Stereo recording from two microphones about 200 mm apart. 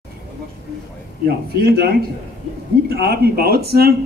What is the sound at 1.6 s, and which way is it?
Speech, 50° right (ahead or behind).